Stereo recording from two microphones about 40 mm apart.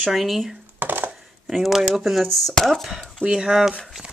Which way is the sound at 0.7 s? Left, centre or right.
Right.